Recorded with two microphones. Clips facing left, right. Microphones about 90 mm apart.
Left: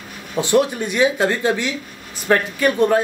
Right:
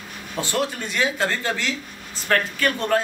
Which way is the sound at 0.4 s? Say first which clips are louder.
Left 8 dB; 20° left (ahead or behind).